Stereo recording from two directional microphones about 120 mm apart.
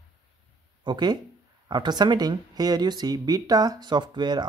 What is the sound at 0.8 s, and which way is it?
Speech, 35° right (ahead or behind).